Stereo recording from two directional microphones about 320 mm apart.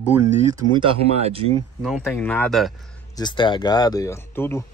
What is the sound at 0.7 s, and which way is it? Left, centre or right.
Speech, centre.